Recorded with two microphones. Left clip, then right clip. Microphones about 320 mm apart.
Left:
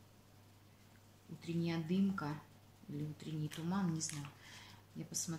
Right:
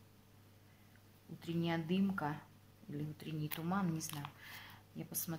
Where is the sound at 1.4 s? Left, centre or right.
Right.